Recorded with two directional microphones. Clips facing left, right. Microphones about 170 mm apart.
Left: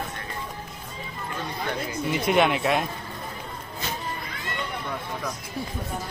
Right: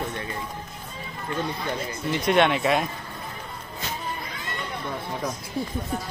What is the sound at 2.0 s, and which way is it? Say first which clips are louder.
Speech: right 1 dB; 5° left (ahead or behind).